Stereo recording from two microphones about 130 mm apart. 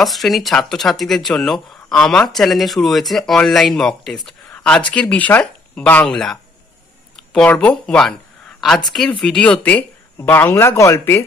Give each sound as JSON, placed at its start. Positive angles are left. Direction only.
{"t": 0.0, "sound": "speech", "side_deg": 0}
{"t": 7.4, "sound": "speech", "side_deg": 5}